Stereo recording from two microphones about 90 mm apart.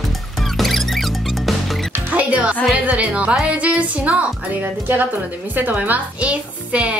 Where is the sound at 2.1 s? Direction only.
15° right (ahead or behind).